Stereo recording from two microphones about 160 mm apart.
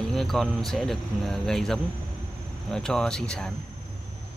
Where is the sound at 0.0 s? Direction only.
Centre (ahead or behind).